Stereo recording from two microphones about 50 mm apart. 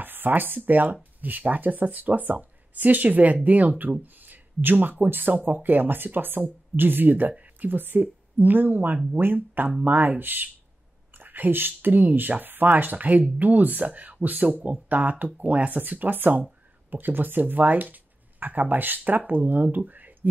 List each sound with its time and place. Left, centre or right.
0.0 s speech: right
4.0 s a sound: right
5.0 s speech: right